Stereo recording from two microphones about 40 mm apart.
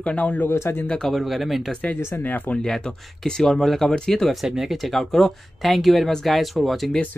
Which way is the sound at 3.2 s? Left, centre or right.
Centre.